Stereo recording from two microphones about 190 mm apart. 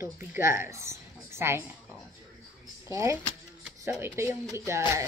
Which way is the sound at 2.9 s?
15° right (ahead or behind).